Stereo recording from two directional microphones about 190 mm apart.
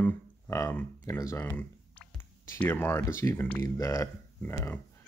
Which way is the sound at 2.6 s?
10° left (ahead or behind).